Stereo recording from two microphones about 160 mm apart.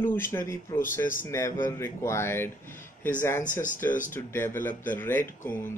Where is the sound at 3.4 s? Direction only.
55° left (ahead or behind).